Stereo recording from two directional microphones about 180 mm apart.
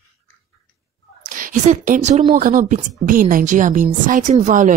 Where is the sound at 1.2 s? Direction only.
45° right (ahead or behind).